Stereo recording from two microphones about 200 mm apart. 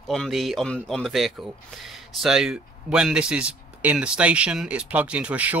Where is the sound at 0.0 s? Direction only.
Centre (ahead or behind).